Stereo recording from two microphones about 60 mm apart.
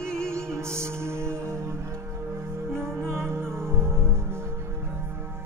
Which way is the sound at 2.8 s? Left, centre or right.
Right.